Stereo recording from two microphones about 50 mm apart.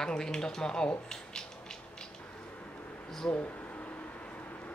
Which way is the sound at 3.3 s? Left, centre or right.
Left.